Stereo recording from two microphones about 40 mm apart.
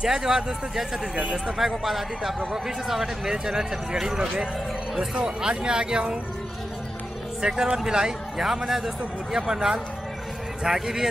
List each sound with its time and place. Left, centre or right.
0.0 s speech: centre
7.4 s speech: centre